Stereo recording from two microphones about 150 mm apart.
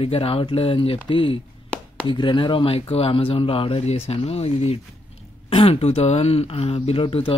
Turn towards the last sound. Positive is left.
turn(degrees=35)  # may be behind; listen again after turning